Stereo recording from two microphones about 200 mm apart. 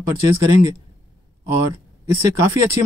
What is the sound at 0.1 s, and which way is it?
Speech, 15° right (ahead or behind).